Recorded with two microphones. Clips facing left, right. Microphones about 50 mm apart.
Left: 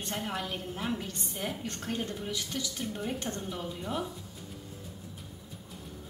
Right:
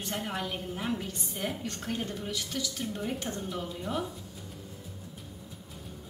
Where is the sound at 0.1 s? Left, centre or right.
Centre.